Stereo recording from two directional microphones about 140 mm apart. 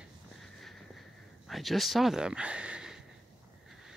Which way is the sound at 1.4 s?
Centre (ahead or behind).